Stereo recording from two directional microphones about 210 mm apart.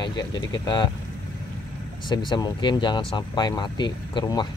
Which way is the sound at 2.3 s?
20° left (ahead or behind).